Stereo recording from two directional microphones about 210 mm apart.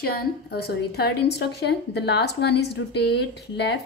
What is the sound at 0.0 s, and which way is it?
A woman's voice, 45° left (ahead or behind).